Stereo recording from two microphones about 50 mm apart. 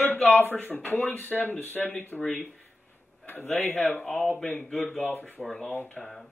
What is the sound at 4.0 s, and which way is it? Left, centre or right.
Speech, centre.